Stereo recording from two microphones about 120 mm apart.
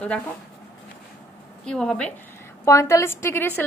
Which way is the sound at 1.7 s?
5° left (ahead or behind).